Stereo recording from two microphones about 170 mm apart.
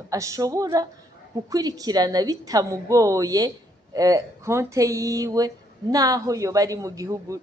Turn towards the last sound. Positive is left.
turn(degrees=-20)  # may be behind; listen again after turning